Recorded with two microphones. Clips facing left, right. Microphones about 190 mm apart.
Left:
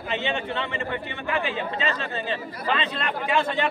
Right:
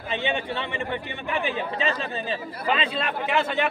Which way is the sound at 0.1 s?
15° right (ahead or behind).